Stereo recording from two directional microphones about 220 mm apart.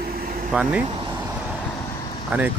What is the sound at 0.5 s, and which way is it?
Speech, 5° right (ahead or behind).